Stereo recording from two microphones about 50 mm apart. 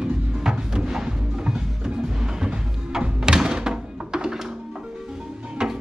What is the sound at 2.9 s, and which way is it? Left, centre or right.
Thunk, centre.